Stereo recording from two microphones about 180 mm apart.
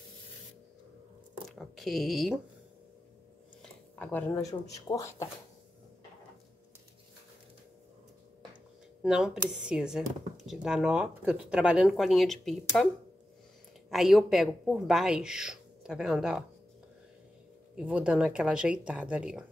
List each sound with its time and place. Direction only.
1.5 s speech: centre (ahead or behind)
4.3 s speech: 20° left (ahead or behind)
9.0 s speech: 5° right (ahead or behind)
13.8 s speech: centre (ahead or behind)
17.7 s speech: 5° right (ahead or behind)